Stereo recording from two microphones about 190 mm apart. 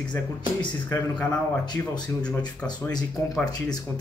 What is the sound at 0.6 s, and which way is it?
Speech, 5° left (ahead or behind).